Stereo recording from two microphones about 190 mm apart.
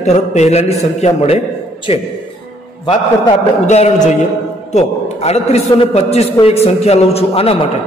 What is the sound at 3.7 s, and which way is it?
A man's voice, 35° left (ahead or behind).